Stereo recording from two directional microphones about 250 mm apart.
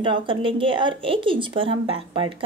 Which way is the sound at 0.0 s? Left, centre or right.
Centre.